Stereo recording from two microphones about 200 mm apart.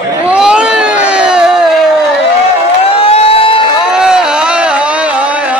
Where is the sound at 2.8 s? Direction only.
30° left (ahead or behind).